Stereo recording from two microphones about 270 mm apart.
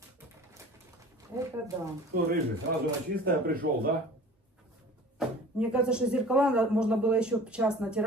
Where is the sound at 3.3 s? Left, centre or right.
Right.